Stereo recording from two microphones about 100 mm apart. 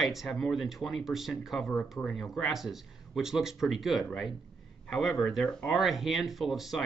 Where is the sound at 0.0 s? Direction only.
Centre (ahead or behind).